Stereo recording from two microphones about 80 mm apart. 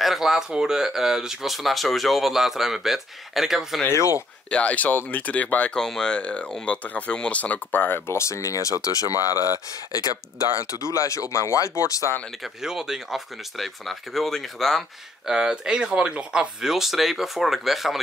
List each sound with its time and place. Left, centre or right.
0.0 s speech: centre
3.9 s speech: left
4.5 s speech: centre
5.8 s speech: centre; by 12.0 s left
12.6 s speech: centre